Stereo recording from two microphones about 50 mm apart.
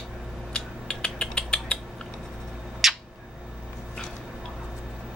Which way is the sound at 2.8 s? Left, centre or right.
Centre.